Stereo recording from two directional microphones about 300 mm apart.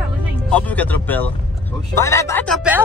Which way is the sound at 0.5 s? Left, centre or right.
Centre.